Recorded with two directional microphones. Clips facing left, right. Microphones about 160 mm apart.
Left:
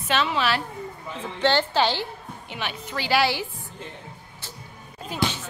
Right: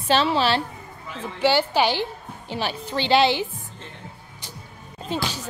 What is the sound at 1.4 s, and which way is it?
Speech, 10° right (ahead or behind).